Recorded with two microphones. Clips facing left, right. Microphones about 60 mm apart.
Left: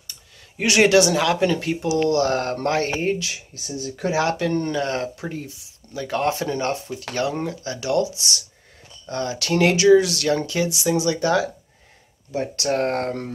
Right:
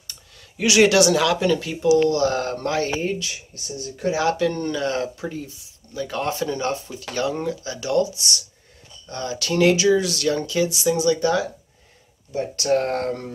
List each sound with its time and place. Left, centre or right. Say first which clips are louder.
0.7 s speech: even; left
1.6 s speech: right 5 dB; left
2.0 s speech: left 3 dB; left
2.3 s speech: left 2 dB; left
4.0 s speech: even; left
4.3 s speech: right 1 dB; left
5.9 s speech: left 2 dB; left
9.1 s speech: left 2 dB; left
9.5 s speech: right 1 dB; left
9.9 s speech: left 3 dB; left
10.9 s speech: even; left
12.7 s speech: right 2 dB; left